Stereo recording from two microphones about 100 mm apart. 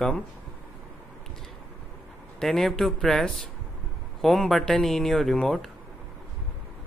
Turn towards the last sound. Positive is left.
turn(degrees=5)  # may be behind; listen again after turning